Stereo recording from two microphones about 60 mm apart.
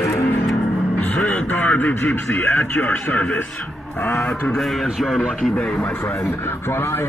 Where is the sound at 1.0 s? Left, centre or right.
Left.